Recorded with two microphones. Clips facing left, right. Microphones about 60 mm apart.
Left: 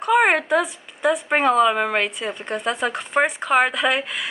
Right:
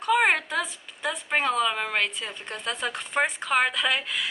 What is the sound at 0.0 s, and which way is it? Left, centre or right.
A woman's voice, centre.